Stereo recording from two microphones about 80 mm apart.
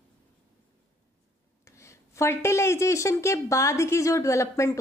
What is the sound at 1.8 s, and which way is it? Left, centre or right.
A woman's voice, left.